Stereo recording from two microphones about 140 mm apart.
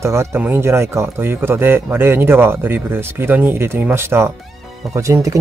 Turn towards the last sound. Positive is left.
turn(degrees=-20)  # may be behind; listen again after turning